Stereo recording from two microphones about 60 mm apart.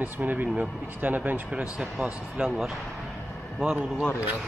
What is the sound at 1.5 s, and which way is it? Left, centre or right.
Speech, centre.